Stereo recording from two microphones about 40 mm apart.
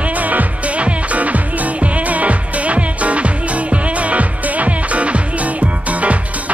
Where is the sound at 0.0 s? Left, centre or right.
Right.